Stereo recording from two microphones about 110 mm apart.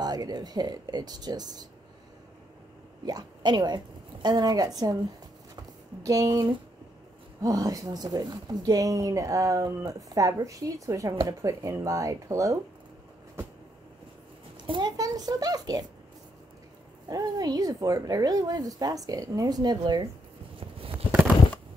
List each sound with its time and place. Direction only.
0.0 s speech: 35° right (ahead or behind)
3.1 s a woman's voice: 40° right (ahead or behind)
6.0 s speech: 30° right (ahead or behind)
14.6 s a sound: 40° right (ahead or behind)
17.1 s speech: 35° right (ahead or behind)